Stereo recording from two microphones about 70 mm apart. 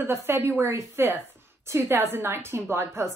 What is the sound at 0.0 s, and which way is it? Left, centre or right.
Speech, right.